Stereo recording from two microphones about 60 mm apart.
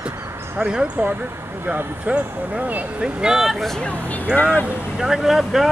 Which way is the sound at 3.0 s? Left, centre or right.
Centre.